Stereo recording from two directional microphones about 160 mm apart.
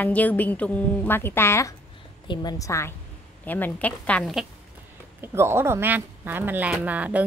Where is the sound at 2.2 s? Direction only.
25° left (ahead or behind); by 4.4 s centre (ahead or behind).